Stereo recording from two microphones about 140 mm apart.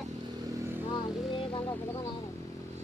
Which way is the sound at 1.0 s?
35° left (ahead or behind).